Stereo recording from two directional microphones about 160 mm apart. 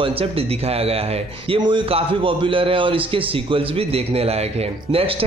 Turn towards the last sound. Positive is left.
turn(degrees=-35)  # may be behind; listen again after turning